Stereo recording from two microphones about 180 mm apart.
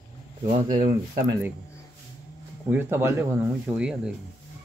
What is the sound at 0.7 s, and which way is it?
Speech, 50° right (ahead or behind).